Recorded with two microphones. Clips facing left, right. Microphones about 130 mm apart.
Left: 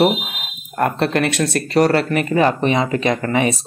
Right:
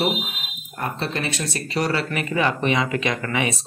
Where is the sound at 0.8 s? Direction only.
70° left (ahead or behind).